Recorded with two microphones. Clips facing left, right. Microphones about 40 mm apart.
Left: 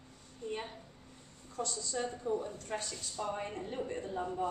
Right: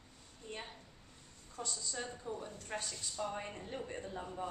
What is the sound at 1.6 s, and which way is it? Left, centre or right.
Speech, right.